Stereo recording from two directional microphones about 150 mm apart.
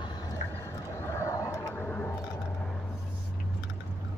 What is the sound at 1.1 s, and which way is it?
Vehicle, 20° left (ahead or behind).